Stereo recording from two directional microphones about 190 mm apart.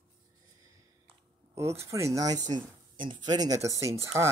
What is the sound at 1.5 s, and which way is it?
Speech, 15° right (ahead or behind).